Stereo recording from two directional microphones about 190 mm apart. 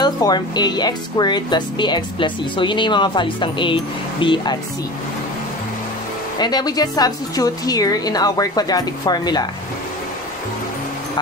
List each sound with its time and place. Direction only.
0.0 s speech: 20° left (ahead or behind)
6.3 s speech: 20° left (ahead or behind)